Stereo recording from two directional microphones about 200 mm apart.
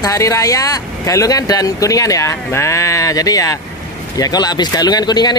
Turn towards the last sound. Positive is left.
turn(degrees=20)  # may be behind; listen again after turning